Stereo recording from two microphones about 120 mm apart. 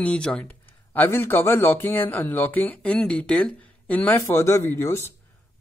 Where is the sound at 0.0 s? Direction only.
10° left (ahead or behind).